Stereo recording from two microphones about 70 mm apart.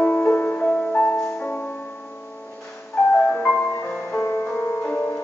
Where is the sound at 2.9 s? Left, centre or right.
Left.